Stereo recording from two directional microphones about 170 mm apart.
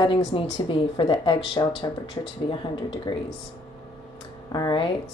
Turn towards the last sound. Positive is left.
turn(degrees=25)  # may be behind; listen again after turning